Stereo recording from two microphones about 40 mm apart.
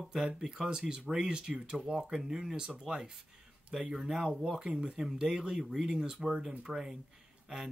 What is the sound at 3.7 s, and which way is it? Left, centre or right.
Speech, centre.